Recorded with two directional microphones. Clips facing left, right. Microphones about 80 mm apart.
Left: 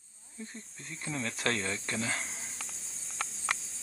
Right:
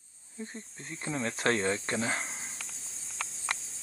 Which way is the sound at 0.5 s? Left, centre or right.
Right.